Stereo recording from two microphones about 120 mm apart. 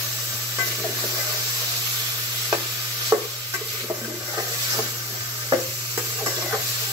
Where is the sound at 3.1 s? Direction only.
30° right (ahead or behind).